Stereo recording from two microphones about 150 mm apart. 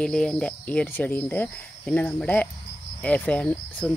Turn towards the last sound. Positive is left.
turn(degrees=10)  # may be behind; listen again after turning